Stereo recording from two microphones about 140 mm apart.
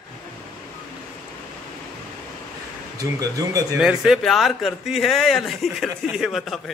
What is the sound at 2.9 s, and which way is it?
Speech, 25° right (ahead or behind).